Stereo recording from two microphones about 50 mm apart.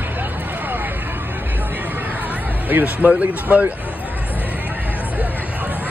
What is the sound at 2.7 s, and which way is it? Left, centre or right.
Speech, right.